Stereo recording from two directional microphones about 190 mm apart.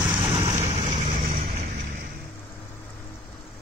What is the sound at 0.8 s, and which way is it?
Music, 35° right (ahead or behind).